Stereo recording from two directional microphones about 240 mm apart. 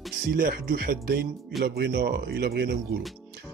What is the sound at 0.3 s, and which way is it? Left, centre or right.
Speech, right.